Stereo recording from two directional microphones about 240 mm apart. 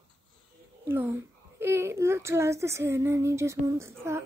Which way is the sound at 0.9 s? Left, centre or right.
Centre.